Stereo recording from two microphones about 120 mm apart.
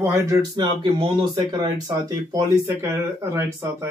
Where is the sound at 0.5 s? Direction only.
45° right (ahead or behind).